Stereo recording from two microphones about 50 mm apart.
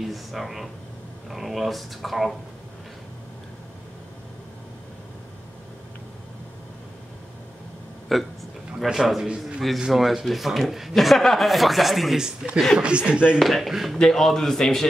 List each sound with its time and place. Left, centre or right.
0.0 s speech: centre
8.1 s speech: centre
8.7 s a man's voice: centre
10.0 s speech: centre
12.2 s a man's voice: centre
13.4 s speech: centre
13.9 s a man's voice: centre